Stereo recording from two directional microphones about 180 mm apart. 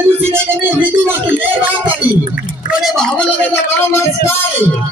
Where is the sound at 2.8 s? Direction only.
5° left (ahead or behind).